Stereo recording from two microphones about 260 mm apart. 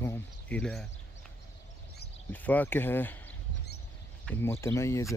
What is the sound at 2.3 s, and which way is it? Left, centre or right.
Speech, centre.